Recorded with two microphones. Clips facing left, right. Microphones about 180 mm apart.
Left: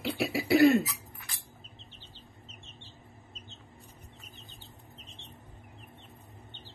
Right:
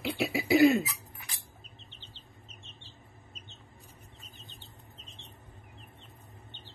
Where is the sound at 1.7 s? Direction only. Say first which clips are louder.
Left 1 dB; 20° right (ahead or behind).